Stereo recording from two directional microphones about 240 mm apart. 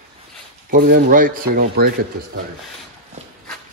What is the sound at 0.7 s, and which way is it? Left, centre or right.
Speech, right.